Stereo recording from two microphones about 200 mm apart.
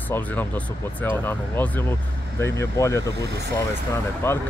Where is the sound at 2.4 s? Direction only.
15° left (ahead or behind).